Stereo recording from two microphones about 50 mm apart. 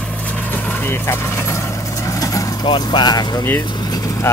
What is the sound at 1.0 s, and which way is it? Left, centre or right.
Vehicle, left.